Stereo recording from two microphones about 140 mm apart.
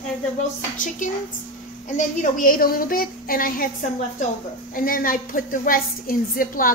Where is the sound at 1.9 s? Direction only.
75° left (ahead or behind).